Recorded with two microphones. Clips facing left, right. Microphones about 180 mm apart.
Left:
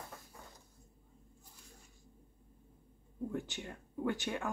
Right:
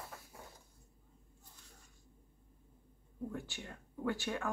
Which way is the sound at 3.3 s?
20° left (ahead or behind).